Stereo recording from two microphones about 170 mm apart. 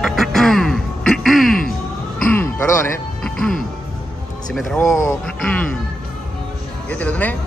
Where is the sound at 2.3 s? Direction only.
15° left (ahead or behind).